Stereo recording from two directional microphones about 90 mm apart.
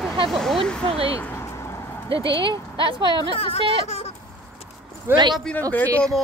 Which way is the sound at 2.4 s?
70° right (ahead or behind).